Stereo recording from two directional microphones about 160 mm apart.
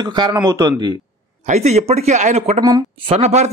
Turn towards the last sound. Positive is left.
turn(degrees=-45)  # may be behind; listen again after turning